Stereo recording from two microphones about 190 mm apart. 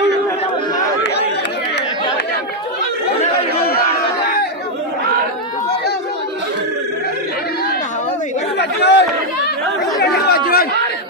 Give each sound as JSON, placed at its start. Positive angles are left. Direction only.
{"t": 8.5, "sound": "chatter", "side_deg": 65}
{"t": 10.0, "sound": "chatter", "side_deg": 60}